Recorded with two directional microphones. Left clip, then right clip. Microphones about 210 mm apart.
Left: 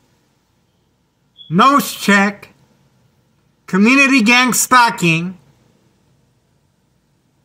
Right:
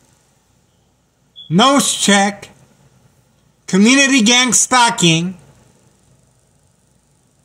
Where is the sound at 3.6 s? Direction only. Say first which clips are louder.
Even; 10° left (ahead or behind).